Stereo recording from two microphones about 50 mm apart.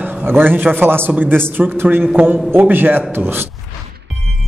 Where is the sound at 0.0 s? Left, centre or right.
Right.